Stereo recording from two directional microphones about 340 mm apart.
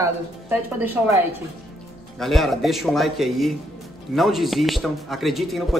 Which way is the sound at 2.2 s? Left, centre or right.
Centre.